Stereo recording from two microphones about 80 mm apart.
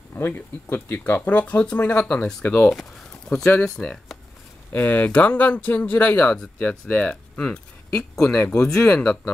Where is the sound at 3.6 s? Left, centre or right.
Centre.